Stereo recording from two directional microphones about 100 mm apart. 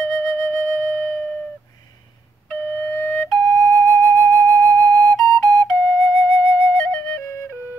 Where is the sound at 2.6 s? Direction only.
15° left (ahead or behind).